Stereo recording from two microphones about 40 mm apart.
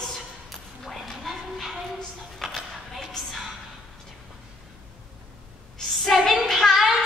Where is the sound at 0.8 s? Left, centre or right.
Centre.